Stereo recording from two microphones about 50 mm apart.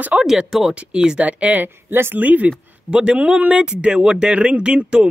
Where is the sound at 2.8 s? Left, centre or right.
Centre.